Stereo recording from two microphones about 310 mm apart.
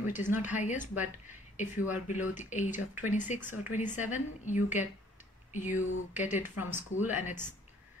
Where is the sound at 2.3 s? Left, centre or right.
Left.